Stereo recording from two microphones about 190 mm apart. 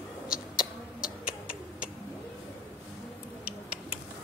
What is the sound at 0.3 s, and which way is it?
Rodents, 5° right (ahead or behind).